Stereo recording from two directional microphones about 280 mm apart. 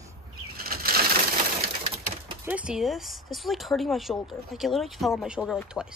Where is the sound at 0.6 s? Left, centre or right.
Right.